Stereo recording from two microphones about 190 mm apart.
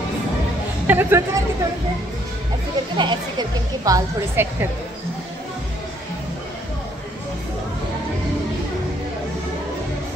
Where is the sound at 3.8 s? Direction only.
20° right (ahead or behind).